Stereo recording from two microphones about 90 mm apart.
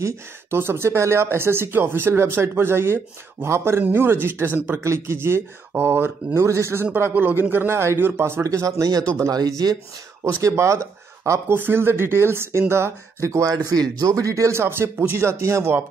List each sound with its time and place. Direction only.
0.0 s speech: 25° right (ahead or behind); by 9.8 s 45° right (ahead or behind)
10.2 s speech: 30° right (ahead or behind)